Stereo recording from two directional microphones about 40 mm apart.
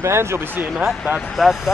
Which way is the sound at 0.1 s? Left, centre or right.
Right.